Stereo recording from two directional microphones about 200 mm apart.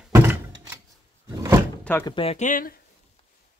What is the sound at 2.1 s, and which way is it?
Speech, 25° left (ahead or behind).